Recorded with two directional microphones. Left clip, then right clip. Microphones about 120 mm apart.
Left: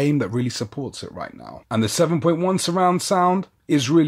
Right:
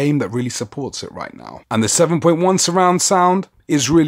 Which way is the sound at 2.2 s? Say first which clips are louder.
Right 6 dB; 35° right (ahead or behind).